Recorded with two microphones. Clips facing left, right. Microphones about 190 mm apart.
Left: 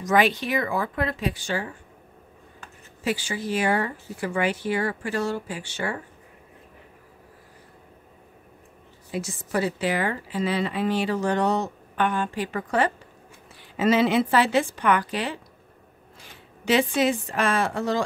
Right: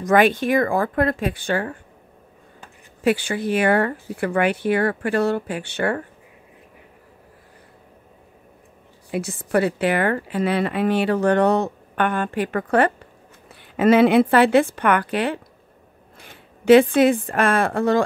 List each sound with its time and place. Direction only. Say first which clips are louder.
0.0 s speech: right 5 dB; 55° right (ahead or behind)
3.0 s a woman's voice: right 7 dB; 60° right (ahead or behind)
9.1 s a woman's voice: right 6 dB; 60° right (ahead or behind)